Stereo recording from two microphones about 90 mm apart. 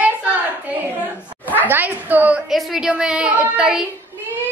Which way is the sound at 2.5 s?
5° right (ahead or behind).